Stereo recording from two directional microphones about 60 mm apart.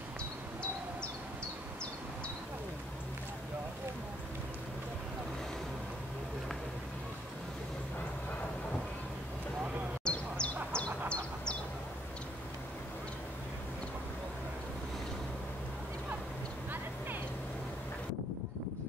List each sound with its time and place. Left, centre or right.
10.0 s bird: centre